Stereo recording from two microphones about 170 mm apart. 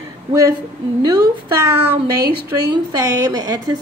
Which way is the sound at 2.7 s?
25° right (ahead or behind).